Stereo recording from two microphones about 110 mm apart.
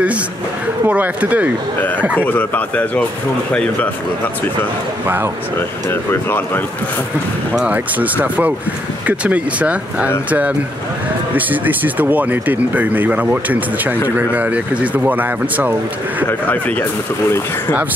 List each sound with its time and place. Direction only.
0.8 s speech: 15° right (ahead or behind)
2.1 s speech: 15° left (ahead or behind)
5.0 s speech: 20° right (ahead or behind)
5.6 s speech: 20° left (ahead or behind)
7.5 s speech: 10° right (ahead or behind)
11.3 s speech: 15° right (ahead or behind)
16.3 s speech: 15° left (ahead or behind)